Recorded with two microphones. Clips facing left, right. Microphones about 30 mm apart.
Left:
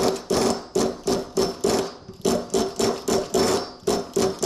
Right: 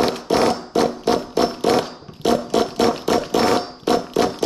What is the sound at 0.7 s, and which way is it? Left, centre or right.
Music, right.